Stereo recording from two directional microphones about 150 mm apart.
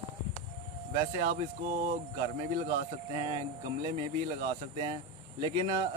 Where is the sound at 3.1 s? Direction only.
35° right (ahead or behind).